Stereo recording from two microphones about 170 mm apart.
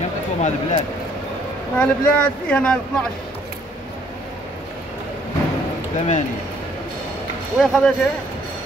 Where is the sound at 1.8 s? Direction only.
5° left (ahead or behind).